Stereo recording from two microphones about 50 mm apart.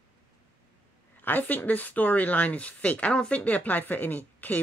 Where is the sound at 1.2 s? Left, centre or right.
Left.